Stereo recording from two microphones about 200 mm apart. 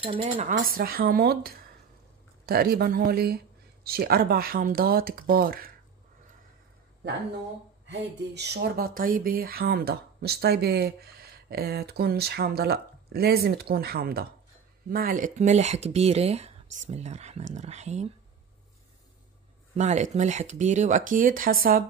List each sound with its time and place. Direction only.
0.0 s speech: 30° right (ahead or behind); by 5.7 s 50° right (ahead or behind)
7.9 s speech: 55° right (ahead or behind); by 18.1 s 35° right (ahead or behind)
19.8 s speech: 35° right (ahead or behind)